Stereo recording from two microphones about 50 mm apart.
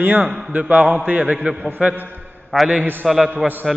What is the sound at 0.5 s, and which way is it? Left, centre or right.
A man's voice, right.